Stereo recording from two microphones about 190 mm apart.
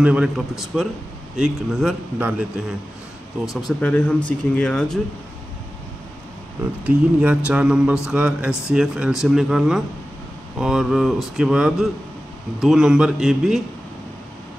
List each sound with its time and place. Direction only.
0.0 s speech: 5° right (ahead or behind)
3.4 s speech: 5° left (ahead or behind)
6.8 s speech: 5° right (ahead or behind)